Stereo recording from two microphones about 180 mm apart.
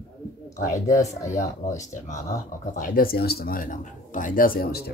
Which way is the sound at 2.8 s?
55° left (ahead or behind).